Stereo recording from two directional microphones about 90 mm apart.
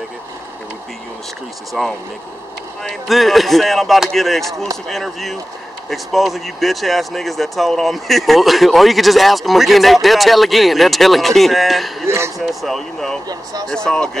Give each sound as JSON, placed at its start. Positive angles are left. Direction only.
{"t": 1.7, "sound": "speech", "side_deg": 0}
{"t": 13.3, "sound": "speech", "side_deg": -45}
{"t": 13.7, "sound": "speech", "side_deg": 10}